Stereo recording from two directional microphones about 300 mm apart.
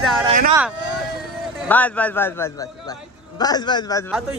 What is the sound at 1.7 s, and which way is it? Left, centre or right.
A man's voice, centre.